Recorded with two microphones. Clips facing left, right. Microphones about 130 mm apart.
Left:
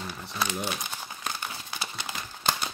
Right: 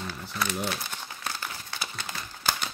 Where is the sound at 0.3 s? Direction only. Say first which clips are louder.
Even; 25° left (ahead or behind).